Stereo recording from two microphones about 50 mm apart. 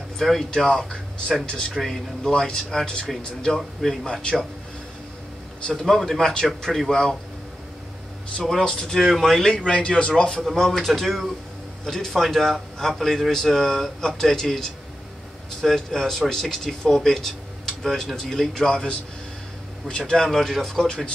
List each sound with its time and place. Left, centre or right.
0.2 s a man's voice: centre
1.7 s a man's voice: centre
4.0 s speech: centre
5.8 s speech: centre
6.9 s speech: centre
8.5 s a man's voice: centre
9.7 s a man's voice: centre
20.2 s speech: centre